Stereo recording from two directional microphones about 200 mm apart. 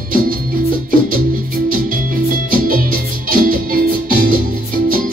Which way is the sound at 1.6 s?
45° right (ahead or behind).